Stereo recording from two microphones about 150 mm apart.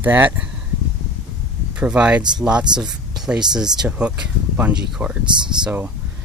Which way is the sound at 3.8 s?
10° right (ahead or behind).